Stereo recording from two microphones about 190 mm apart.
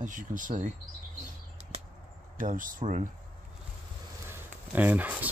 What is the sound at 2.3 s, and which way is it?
Speech, 45° right (ahead or behind).